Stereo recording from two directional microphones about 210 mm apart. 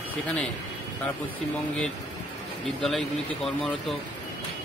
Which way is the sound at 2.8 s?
Centre (ahead or behind).